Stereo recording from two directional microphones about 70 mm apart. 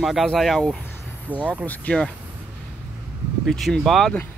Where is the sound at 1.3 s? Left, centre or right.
Centre.